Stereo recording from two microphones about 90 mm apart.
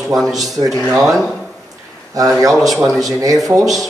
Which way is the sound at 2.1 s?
40° right (ahead or behind).